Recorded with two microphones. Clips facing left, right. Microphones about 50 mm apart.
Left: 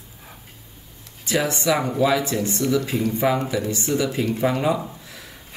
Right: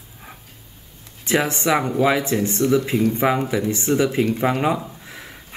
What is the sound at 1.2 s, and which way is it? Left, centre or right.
Speech, right.